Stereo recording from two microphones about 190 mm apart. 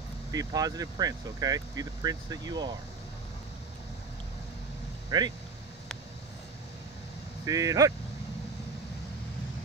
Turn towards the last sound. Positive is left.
turn(degrees=-15)  # may be behind; listen again after turning